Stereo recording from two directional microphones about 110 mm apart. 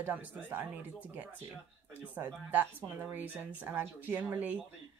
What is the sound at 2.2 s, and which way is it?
Speech, 15° right (ahead or behind).